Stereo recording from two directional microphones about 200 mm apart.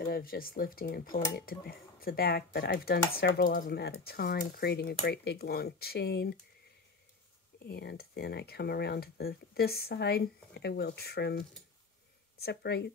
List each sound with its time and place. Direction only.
0.0 s speech: 45° left (ahead or behind)
7.5 s speech: 55° left (ahead or behind)